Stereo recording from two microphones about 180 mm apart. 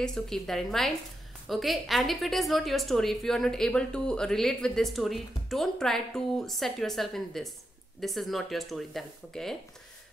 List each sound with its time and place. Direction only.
0.0 s a woman's voice: centre (ahead or behind)